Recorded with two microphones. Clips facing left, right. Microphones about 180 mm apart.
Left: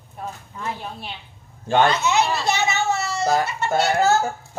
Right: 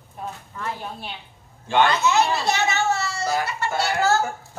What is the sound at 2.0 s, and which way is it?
A child's voice, 20° left (ahead or behind).